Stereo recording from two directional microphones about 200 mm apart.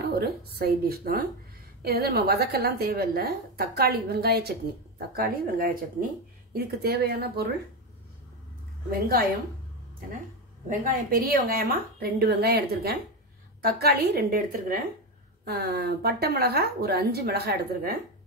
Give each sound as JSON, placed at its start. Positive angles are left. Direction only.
{"t": 0.2, "sound": "a woman's voice", "side_deg": -50}
{"t": 10.8, "sound": "a woman's voice", "side_deg": -45}